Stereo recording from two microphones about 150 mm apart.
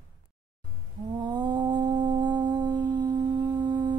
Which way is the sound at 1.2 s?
30° right (ahead or behind).